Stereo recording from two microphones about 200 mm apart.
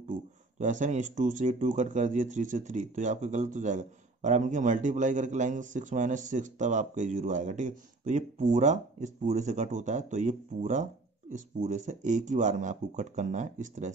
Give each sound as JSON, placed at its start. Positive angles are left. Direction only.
{"t": 0.1, "sound": "speech", "side_deg": -40}